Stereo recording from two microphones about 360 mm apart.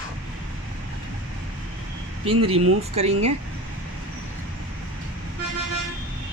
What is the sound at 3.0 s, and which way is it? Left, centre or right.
Speech, centre.